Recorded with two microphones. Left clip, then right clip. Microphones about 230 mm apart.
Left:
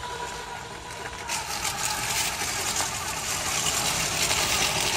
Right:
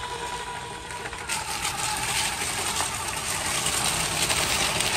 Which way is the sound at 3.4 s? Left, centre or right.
Centre.